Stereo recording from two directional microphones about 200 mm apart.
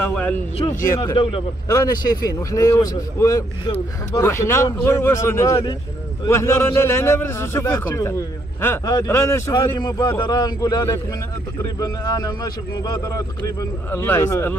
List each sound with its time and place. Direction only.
0.0 s a man's voice: 5° left (ahead or behind)